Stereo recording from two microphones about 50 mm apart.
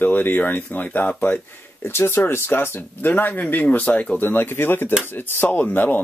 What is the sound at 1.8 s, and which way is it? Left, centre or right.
Speech, left.